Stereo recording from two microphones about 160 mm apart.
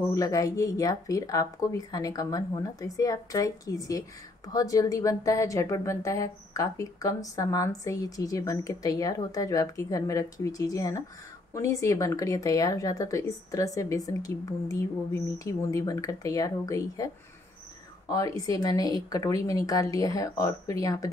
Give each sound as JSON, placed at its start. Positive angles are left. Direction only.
{"t": 0.1, "sound": "a woman's voice", "side_deg": 20}
{"t": 18.1, "sound": "a woman's voice", "side_deg": 20}